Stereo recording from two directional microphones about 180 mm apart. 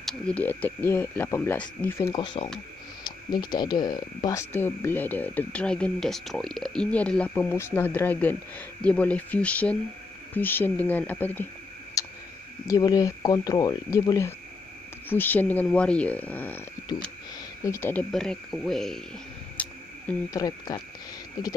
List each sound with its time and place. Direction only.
0.0 s speech: 10° left (ahead or behind)
2.1 s speech: 30° left (ahead or behind); by 11.4 s 10° left (ahead or behind)
12.0 s clicking: 15° left (ahead or behind)
12.6 s speech: 20° left (ahead or behind)
17.6 s speech: 15° left (ahead or behind)
19.5 s a sound: 10° left (ahead or behind)
20.2 s speech: 20° left (ahead or behind)